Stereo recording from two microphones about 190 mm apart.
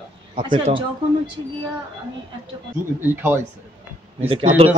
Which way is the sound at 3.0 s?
10° right (ahead or behind).